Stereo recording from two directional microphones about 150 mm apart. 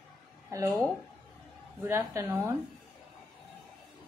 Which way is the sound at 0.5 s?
20° right (ahead or behind).